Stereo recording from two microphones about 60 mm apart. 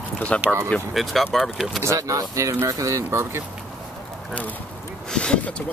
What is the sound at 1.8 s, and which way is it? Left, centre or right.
Speech, right.